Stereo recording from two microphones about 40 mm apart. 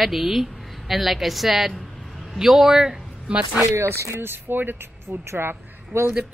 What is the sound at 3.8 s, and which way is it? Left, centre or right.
Speech, right.